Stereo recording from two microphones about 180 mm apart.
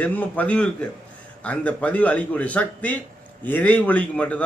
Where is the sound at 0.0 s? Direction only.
10° left (ahead or behind).